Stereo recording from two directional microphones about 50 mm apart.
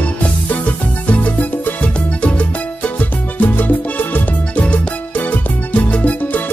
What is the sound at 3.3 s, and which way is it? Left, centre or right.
Music, left.